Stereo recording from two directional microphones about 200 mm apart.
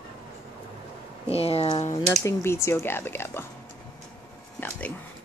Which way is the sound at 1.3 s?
30° left (ahead or behind).